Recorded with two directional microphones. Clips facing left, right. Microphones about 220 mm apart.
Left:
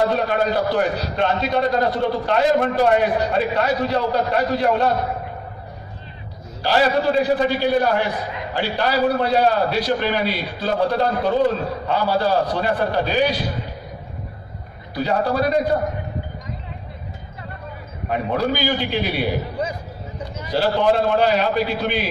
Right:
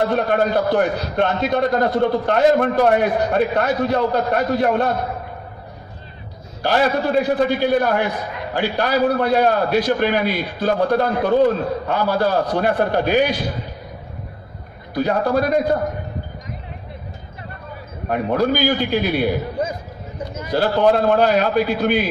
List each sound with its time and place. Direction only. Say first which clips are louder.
0.1 s a man's voice: right 2 dB; 50° right (ahead or behind)
6.6 s a man's voice: even; 50° right (ahead or behind)
15.0 s a man's voice: right 2 dB; 50° right (ahead or behind)
18.0 s a man's voice: right 3 dB; 50° right (ahead or behind)